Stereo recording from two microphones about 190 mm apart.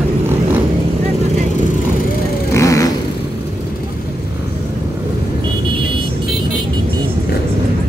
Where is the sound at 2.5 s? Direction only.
15° left (ahead or behind).